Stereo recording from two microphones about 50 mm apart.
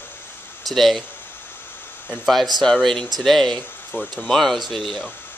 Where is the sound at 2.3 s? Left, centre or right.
Centre.